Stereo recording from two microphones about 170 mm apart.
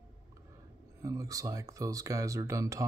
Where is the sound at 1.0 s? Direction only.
20° right (ahead or behind).